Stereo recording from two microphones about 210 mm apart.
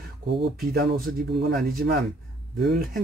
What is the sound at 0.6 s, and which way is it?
Speech, 45° right (ahead or behind).